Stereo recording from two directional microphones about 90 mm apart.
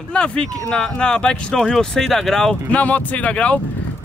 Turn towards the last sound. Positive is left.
turn(degrees=15)  # may be behind; listen again after turning